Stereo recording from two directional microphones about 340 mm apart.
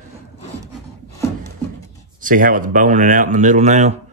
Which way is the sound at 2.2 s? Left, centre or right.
Right.